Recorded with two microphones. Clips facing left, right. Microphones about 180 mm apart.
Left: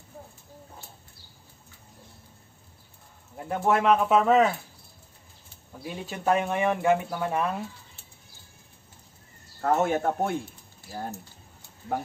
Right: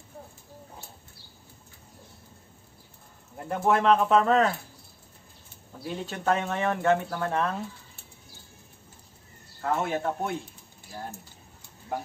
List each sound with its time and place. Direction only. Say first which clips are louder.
3.3 s speech: even; 5° left (ahead or behind)
5.8 s speech: right 2 dB; 5° left (ahead or behind)
9.6 s speech: left 4 dB; 45° left (ahead or behind)